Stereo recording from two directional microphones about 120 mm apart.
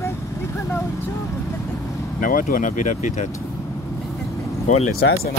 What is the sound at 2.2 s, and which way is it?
Speech, 90° left.